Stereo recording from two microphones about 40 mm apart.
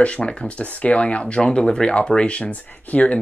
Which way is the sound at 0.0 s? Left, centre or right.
Left.